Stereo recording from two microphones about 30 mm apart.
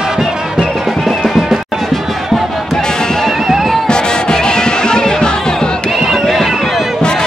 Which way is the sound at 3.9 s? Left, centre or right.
Left.